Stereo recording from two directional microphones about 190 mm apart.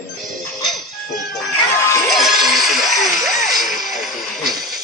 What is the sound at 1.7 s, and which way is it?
Music, 15° left (ahead or behind).